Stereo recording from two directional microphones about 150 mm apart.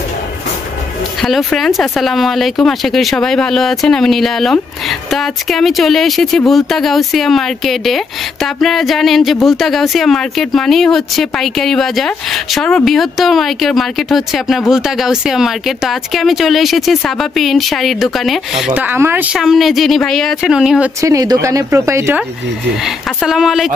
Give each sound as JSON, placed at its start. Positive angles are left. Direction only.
{"t": 1.2, "sound": "speech", "side_deg": 0}
{"t": 18.7, "sound": "speech", "side_deg": -10}
{"t": 19.3, "sound": "speech", "side_deg": 0}
{"t": 21.0, "sound": "speech", "side_deg": -25}
{"t": 23.2, "sound": "speech", "side_deg": -5}